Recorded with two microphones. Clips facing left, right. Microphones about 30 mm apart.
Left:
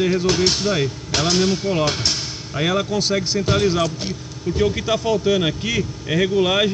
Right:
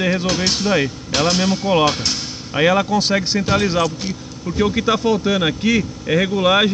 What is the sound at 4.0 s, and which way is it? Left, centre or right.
Speech, centre.